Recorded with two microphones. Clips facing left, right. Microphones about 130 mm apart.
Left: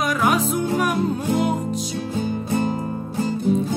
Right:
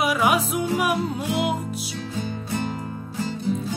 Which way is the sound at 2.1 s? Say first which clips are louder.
Left 6 dB; 40° left (ahead or behind).